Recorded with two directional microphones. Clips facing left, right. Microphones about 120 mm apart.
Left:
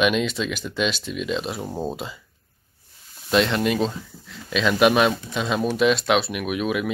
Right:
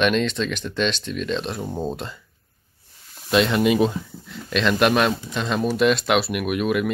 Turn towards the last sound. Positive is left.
turn(degrees=0)  # may be behind; listen again after turning